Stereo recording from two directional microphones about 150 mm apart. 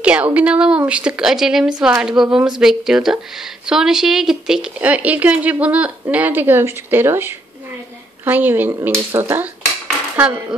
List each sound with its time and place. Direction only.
0.0 s speech: 10° right (ahead or behind)